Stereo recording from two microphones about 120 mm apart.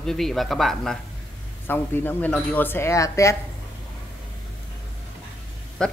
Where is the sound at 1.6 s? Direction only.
15° left (ahead or behind).